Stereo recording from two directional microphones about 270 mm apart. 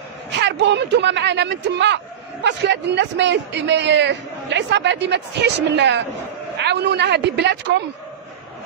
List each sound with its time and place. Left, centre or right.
0.4 s a man's voice: right